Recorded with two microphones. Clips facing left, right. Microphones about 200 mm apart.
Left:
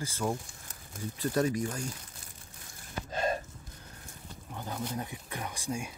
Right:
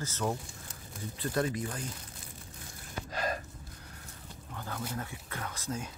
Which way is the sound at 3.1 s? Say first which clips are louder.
Left 4 dB; 25° left (ahead or behind).